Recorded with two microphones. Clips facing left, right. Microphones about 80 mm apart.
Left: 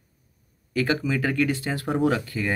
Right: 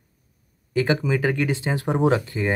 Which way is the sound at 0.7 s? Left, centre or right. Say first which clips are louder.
Right 3 dB; right.